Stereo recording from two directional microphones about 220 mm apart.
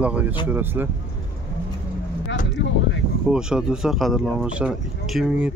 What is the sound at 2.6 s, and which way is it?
Speech, 50° left (ahead or behind).